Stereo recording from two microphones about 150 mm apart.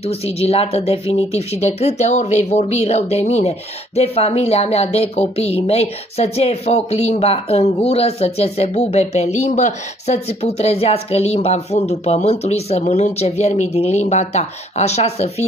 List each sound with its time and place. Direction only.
0.4 s speech: 40° left (ahead or behind)